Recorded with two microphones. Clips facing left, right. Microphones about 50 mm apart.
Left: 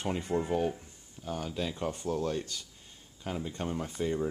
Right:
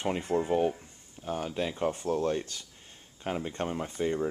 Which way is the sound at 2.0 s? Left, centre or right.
Right.